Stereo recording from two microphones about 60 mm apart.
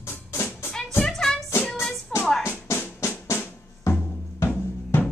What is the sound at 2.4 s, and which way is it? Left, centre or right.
Music, left.